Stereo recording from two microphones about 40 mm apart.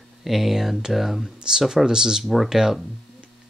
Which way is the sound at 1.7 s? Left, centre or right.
Centre.